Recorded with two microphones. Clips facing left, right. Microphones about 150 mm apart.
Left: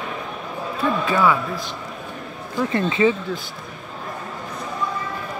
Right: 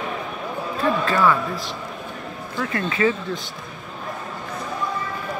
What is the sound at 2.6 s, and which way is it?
Speech, 25° left (ahead or behind).